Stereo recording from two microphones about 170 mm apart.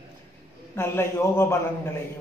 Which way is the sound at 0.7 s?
15° left (ahead or behind).